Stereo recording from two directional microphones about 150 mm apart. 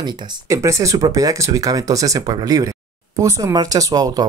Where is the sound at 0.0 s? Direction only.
20° right (ahead or behind).